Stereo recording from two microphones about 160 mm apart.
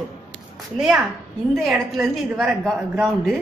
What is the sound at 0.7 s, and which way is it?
Speech, 5° right (ahead or behind).